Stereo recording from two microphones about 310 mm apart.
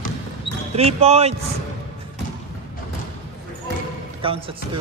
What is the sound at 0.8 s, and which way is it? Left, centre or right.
Speech, centre.